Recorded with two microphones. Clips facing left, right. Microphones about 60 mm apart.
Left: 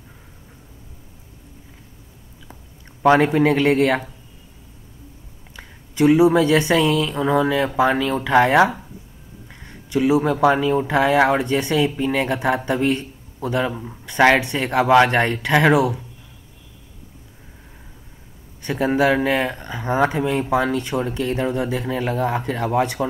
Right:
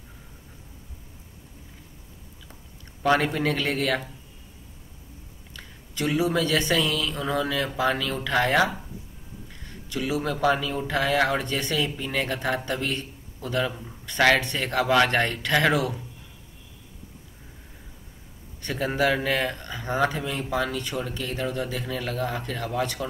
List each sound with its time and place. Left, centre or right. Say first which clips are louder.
3.0 s speech: left 8 dB; left
5.6 s speech: left 12 dB; left
18.6 s speech: left 6 dB; centre